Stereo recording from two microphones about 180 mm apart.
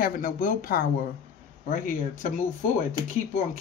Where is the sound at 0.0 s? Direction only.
50° left (ahead or behind).